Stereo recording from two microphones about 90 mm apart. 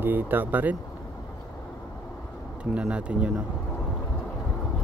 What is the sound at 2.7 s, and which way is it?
Speech, 15° right (ahead or behind).